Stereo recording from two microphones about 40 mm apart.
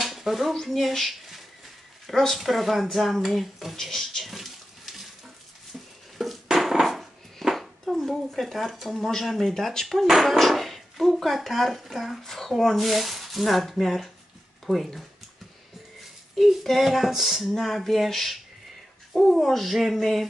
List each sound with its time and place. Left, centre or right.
0.0 s a sound: centre
0.5 s speech: centre
3.8 s a sound: centre
6.1 s dishes: centre
9.2 s speech: centre
14.7 s speech: centre
16.3 s speech: centre
19.4 s speech: centre